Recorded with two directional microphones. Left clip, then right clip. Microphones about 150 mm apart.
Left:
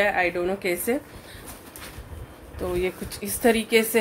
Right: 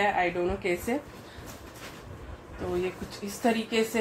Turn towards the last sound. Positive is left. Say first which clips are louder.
# left 6 dB
turn(degrees=70)  # may be behind; listen again after turning